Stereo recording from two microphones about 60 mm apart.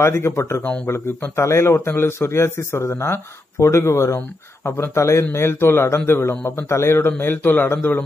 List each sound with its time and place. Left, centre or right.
0.0 s a man's voice: left